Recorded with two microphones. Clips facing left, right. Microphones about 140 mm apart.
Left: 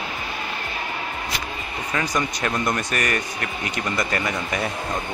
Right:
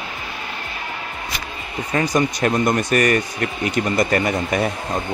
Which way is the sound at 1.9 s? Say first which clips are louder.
Right 6 dB; 35° right (ahead or behind).